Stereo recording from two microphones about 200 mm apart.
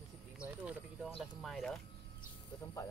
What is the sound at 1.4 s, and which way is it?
Speech, centre (ahead or behind).